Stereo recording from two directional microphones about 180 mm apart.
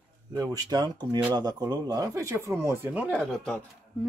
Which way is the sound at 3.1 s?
5° left (ahead or behind).